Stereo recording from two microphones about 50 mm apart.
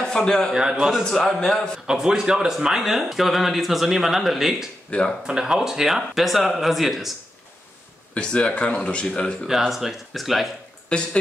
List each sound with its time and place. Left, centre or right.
0.0 s a man's voice: centre
0.5 s a man's voice: centre
1.1 s a man's voice: centre
1.9 s speech: centre
8.1 s speech: left
9.6 s speech: centre